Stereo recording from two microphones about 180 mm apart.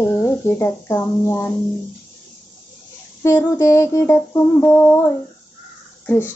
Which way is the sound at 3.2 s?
15° left (ahead or behind).